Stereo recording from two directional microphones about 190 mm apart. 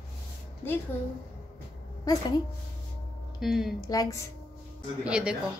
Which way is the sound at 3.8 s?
20° left (ahead or behind).